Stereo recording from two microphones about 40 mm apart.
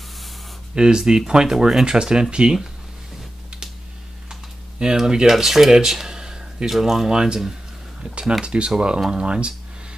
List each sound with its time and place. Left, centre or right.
0.7 s speech: centre
4.3 s typing: centre
5.3 s speech: centre
6.7 s speech: centre
8.0 s speech: right